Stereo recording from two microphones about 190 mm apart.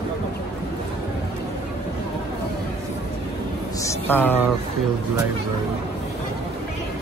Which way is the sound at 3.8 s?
15° left (ahead or behind).